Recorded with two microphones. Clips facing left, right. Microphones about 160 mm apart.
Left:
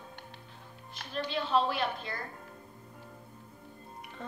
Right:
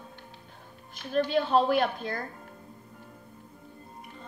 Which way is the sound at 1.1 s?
50° right (ahead or behind).